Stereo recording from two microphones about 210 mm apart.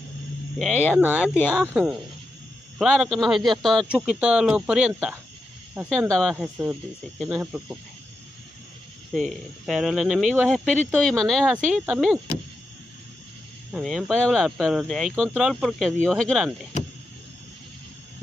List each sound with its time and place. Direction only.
0.6 s speech: centre (ahead or behind)
6.3 s speech: 5° right (ahead or behind)
9.1 s speech: centre (ahead or behind)
13.7 s speech: centre (ahead or behind)